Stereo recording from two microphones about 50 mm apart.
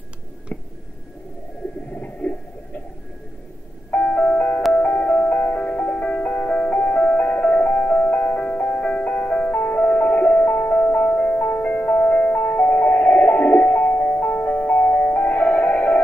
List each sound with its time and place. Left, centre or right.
1.9 s stomach rumble: left
3.9 s music: left